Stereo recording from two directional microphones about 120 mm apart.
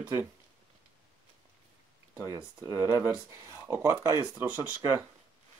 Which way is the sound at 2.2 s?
30° right (ahead or behind).